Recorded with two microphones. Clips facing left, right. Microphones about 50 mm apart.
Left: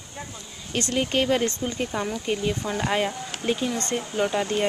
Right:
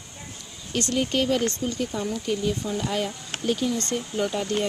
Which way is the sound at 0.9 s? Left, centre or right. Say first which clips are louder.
Left 1 dB; left.